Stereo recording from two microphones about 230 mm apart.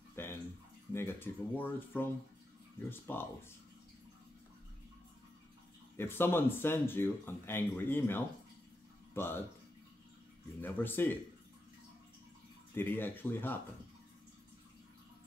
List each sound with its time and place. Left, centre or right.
0.1 s bathtub: centre
0.9 s speech: centre
5.9 s speech: centre
10.6 s speech: centre
12.7 s speech: centre